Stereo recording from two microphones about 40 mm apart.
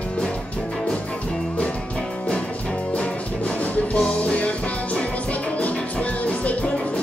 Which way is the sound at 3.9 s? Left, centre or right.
Left.